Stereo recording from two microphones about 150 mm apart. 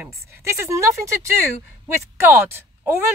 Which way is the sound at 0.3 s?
20° right (ahead or behind).